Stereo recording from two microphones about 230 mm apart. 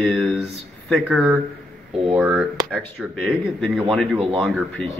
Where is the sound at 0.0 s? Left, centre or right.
Centre.